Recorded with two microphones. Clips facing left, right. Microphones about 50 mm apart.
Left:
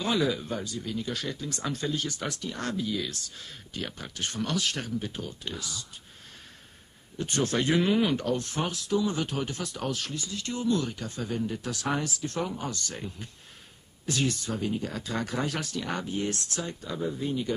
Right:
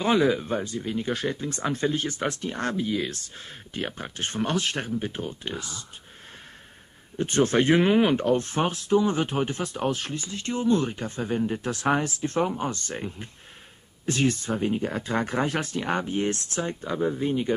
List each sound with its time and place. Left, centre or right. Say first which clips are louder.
0.0 s speech: right 5 dB; right
7.2 s speech: right 6 dB; right